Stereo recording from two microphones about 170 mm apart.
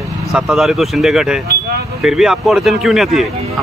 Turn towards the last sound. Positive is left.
turn(degrees=0)  # may be behind; listen again after turning